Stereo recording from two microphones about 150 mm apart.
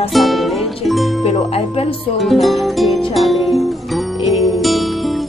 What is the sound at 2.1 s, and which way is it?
Music, centre (ahead or behind).